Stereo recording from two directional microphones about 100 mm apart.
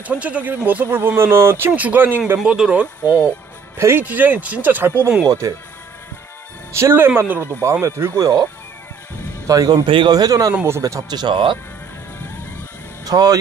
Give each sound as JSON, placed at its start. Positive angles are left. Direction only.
{"t": 0.0, "sound": "speech", "side_deg": -15}
{"t": 2.3, "sound": "speech", "side_deg": -5}
{"t": 3.7, "sound": "speech", "side_deg": -25}
{"t": 5.4, "sound": "speech", "side_deg": -35}
{"t": 6.7, "sound": "speech", "side_deg": -25}
{"t": 7.8, "sound": "speech", "side_deg": -35}
{"t": 9.5, "sound": "speech", "side_deg": -40}
{"t": 9.8, "sound": "a man's voice", "side_deg": -60}
{"t": 10.1, "sound": "speech", "side_deg": -40}
{"t": 13.0, "sound": "speech", "side_deg": -40}